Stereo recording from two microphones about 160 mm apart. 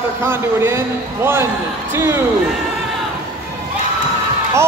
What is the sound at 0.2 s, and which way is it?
A man's voice, 15° right (ahead or behind).